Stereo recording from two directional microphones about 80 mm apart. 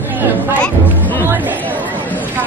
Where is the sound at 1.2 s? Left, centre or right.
Right.